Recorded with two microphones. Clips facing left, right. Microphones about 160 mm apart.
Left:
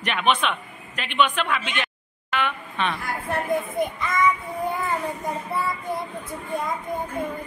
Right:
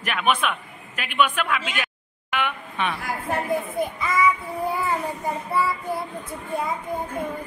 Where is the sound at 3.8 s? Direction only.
5° right (ahead or behind).